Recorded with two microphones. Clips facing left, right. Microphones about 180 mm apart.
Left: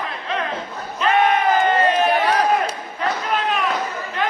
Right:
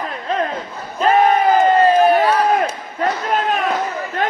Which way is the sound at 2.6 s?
45° right (ahead or behind).